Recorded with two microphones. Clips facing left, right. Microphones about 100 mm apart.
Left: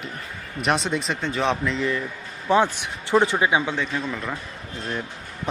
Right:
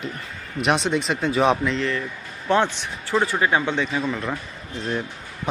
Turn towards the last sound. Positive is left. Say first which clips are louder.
# right 1 dB
turn(degrees=0)  # may be behind; listen again after turning